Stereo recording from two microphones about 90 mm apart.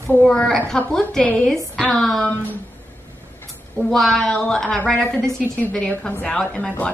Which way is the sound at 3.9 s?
5° left (ahead or behind).